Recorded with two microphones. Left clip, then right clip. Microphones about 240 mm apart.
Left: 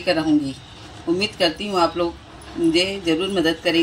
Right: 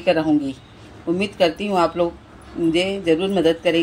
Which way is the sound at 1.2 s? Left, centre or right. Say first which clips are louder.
Right 3 dB; right.